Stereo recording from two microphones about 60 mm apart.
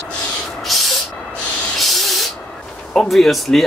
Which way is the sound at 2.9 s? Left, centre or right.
Centre.